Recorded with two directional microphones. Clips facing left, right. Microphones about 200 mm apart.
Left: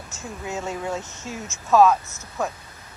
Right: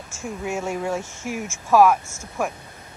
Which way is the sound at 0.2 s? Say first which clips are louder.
Right 4 dB; 15° right (ahead or behind).